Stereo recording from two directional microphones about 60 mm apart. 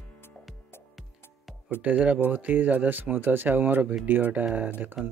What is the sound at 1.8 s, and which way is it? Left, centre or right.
Speech, right.